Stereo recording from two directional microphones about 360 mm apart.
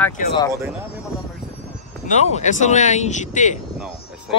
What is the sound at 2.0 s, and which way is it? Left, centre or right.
Speech, centre.